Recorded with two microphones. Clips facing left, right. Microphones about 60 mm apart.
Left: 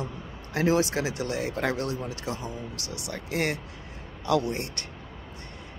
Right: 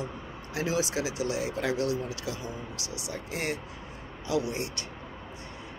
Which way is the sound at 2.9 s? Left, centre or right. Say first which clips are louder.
Left 3 dB; left.